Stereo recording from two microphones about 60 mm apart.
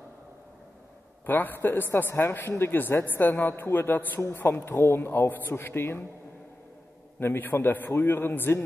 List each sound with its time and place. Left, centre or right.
1.2 s a man's voice: left
7.2 s a man's voice: left